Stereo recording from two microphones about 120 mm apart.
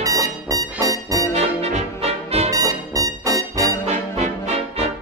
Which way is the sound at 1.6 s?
60° right (ahead or behind).